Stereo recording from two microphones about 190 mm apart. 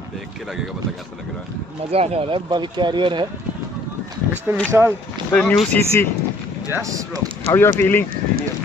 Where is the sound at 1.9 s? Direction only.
30° right (ahead or behind).